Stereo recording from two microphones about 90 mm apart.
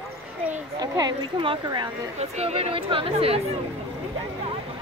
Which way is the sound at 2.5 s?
90° right.